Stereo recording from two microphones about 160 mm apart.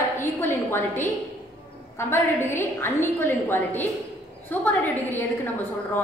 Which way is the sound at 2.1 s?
15° left (ahead or behind).